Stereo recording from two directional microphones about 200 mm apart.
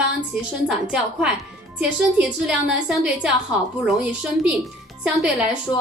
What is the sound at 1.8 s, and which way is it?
Speech, 5° right (ahead or behind).